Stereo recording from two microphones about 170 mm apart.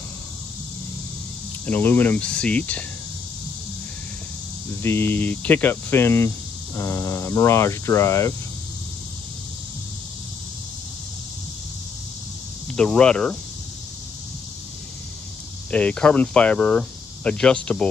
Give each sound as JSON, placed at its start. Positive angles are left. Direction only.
{"t": 1.7, "sound": "speech", "side_deg": 10}
{"t": 4.8, "sound": "speech", "side_deg": 15}
{"t": 12.7, "sound": "speech", "side_deg": 5}
{"t": 15.7, "sound": "speech", "side_deg": 5}